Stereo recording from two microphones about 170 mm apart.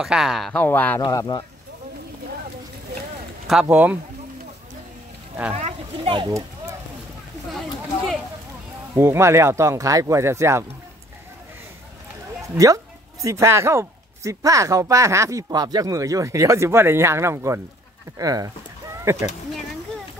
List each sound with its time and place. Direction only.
0.0 s speech: centre (ahead or behind)
1.0 s speech: 25° left (ahead or behind)
3.7 s speech: 10° right (ahead or behind)
5.5 s speech: 40° right (ahead or behind)
6.1 s speech: 20° right (ahead or behind)
8.9 s speech: 15° right (ahead or behind)
12.5 s speech: 20° right (ahead or behind)